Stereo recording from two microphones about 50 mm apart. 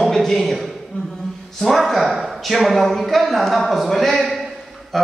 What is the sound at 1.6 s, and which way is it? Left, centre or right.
A woman's voice, centre.